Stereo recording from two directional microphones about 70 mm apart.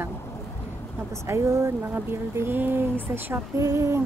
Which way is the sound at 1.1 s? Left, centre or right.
Right.